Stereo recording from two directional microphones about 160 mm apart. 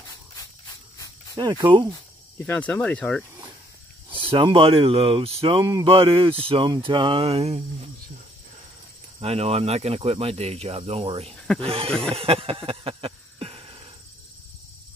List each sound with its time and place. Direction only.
1.3 s speech: 25° right (ahead or behind)
2.3 s speech: 10° left (ahead or behind)
4.1 s speech: 30° right (ahead or behind)
9.2 s speech: 40° right (ahead or behind)
11.9 s a sound: 5° left (ahead or behind)
12.2 s a sound: 35° right (ahead or behind)